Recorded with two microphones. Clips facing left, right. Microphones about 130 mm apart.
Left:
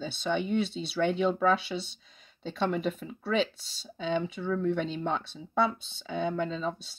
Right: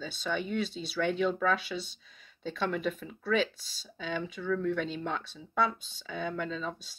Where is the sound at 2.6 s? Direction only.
30° left (ahead or behind).